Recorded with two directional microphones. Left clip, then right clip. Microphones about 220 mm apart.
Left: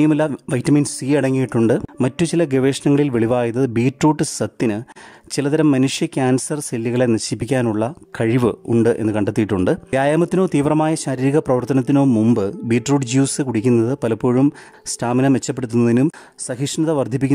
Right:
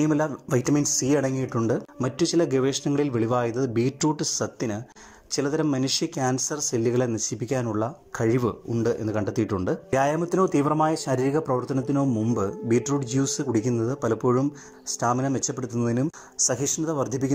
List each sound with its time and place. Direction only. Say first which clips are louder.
0.7 s speech: left 7 dB; 40° left (ahead or behind)
9.8 s speech: left 3 dB; 25° left (ahead or behind)
10.1 s speech: left 5 dB; 35° left (ahead or behind)
11.1 s speech: left 6 dB; 45° left (ahead or behind)
11.4 s speech: left 7 dB; 30° left (ahead or behind)
11.7 s speech: left 9 dB; 45° left (ahead or behind)
16.4 s speech: left 6 dB; 25° left (ahead or behind)